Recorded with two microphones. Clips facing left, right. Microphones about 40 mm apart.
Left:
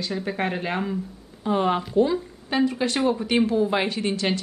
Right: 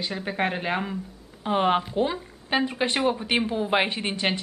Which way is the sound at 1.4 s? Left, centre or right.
Right.